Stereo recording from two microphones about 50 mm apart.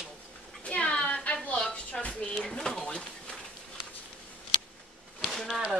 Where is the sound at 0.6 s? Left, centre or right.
Left.